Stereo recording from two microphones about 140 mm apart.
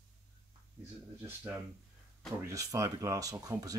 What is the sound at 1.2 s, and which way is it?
Speech, 15° right (ahead or behind).